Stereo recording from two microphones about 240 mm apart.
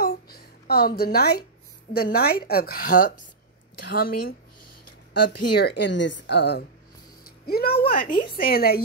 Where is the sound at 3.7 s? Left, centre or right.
Left.